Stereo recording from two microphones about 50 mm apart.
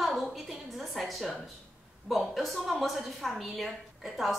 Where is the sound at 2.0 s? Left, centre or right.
Centre.